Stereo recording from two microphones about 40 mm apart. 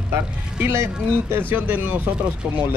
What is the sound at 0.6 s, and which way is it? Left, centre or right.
Speech, right.